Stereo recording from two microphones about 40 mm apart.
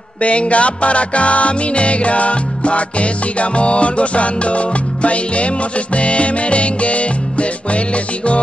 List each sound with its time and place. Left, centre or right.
0.2 s music: left